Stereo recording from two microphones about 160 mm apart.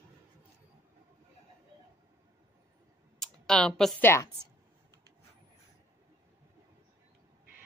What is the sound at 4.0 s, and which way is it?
Speech, 15° left (ahead or behind).